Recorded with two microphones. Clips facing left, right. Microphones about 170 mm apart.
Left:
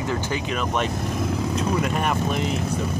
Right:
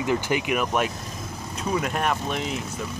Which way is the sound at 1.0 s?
65° left (ahead or behind).